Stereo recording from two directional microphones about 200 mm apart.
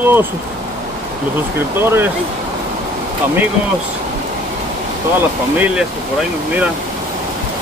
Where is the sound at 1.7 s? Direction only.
10° right (ahead or behind).